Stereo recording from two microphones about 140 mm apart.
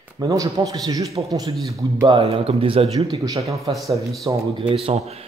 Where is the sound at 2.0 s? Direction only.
40° right (ahead or behind).